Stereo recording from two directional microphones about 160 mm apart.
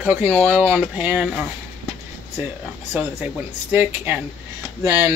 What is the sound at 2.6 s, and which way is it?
Speech, 10° right (ahead or behind).